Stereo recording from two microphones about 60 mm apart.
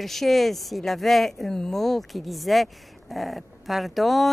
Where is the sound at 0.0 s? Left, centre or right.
Centre.